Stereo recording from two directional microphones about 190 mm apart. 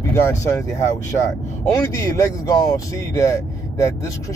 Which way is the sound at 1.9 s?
15° left (ahead or behind).